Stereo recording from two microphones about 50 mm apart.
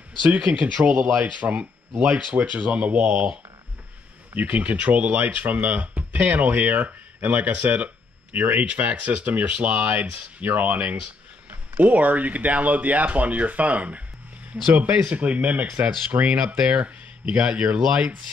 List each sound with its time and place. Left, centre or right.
0.6 s speech: centre
1.2 s speech: right
4.4 s speech: right